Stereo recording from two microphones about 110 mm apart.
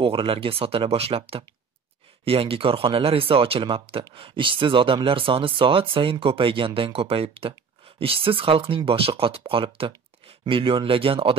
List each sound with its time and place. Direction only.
0.0 s speech: 55° right (ahead or behind)